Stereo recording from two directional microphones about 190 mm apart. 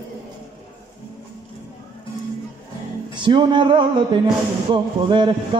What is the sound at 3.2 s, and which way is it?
Speech, 25° right (ahead or behind).